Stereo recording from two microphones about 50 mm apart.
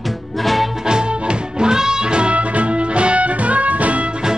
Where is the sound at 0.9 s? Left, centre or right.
Centre.